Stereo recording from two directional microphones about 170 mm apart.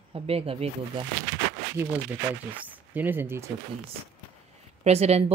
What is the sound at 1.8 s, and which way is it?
Speech, 15° right (ahead or behind).